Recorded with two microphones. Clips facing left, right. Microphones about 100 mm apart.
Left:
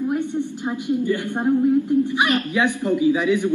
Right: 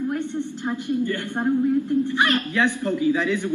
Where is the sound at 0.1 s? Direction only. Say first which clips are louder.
Left 3 dB; 15° left (ahead or behind).